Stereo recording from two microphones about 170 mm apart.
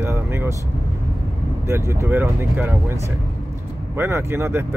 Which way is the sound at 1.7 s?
15° right (ahead or behind).